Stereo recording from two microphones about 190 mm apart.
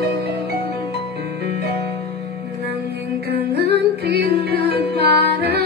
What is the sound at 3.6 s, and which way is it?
Music, 60° right (ahead or behind).